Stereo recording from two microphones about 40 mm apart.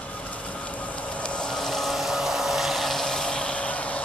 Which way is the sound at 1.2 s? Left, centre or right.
Left.